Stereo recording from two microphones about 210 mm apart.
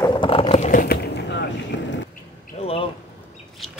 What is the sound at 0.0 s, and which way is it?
Roaring cats, 20° left (ahead or behind).